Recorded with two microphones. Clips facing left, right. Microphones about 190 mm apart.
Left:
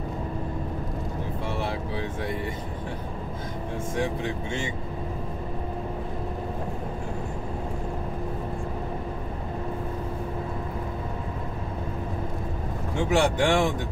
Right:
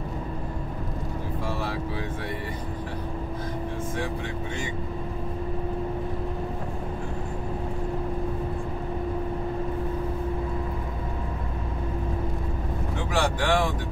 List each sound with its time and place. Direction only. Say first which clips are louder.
13.1 s vehicle: left 3 dB; 25° left (ahead or behind)